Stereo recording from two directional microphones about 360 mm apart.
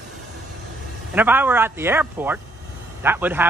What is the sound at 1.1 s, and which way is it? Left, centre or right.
Speech, centre.